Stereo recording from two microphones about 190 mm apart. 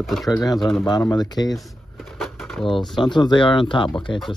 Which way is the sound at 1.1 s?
20° left (ahead or behind).